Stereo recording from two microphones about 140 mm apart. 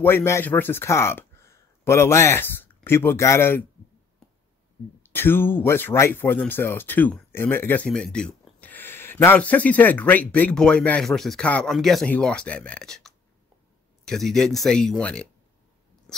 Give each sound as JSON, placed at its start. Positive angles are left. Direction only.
{"t": 0.0, "sound": "speech", "side_deg": 15}
{"t": 4.2, "sound": "a sound", "side_deg": 5}
{"t": 5.0, "sound": "speech", "side_deg": 15}